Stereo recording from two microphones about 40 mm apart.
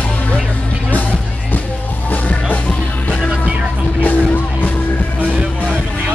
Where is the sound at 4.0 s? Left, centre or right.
Left.